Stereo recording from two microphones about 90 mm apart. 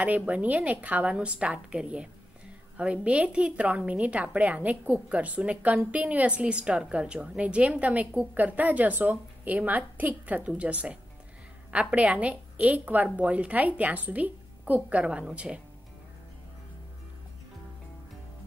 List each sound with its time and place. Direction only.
0.0 s a woman's voice: 15° right (ahead or behind)